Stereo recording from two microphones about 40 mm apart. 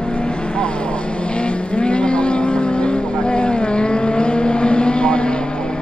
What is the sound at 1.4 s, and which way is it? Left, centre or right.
Vehicle, left.